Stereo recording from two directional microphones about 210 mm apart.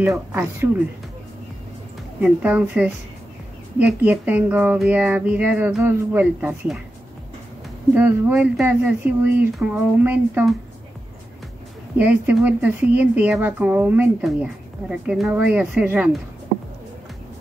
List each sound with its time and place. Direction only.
0.0 s speech: 10° right (ahead or behind)
2.1 s speech: 5° right (ahead or behind)
7.9 s speech: 10° right (ahead or behind)
12.0 s speech: 5° right (ahead or behind)